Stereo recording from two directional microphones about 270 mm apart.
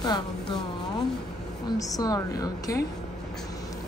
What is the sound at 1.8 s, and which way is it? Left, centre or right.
Speech, centre.